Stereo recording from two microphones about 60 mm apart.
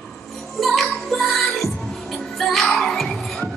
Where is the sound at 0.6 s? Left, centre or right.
Centre.